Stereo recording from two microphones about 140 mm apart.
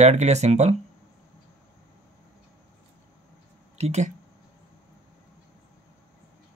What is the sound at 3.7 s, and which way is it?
Speech, 50° right (ahead or behind).